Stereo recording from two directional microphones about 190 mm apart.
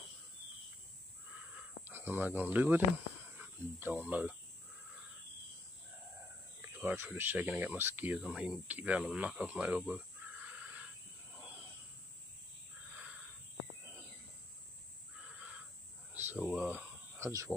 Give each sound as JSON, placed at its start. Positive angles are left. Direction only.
{"t": 1.9, "sound": "speech", "side_deg": -10}
{"t": 6.6, "sound": "speech", "side_deg": -10}
{"t": 16.1, "sound": "cricket", "side_deg": -10}
{"t": 16.4, "sound": "a sound", "side_deg": 5}
{"t": 17.2, "sound": "speech", "side_deg": -15}